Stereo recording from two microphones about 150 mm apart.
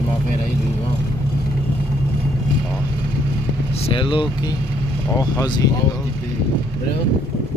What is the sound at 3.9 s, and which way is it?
Speech, 35° left (ahead or behind).